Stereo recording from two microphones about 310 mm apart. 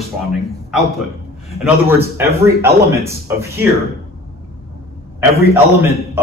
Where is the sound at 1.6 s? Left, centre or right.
Centre.